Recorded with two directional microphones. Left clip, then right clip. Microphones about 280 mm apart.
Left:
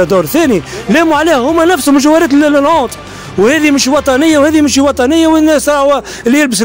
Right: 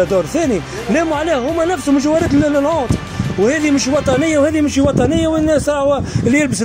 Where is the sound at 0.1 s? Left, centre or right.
Left.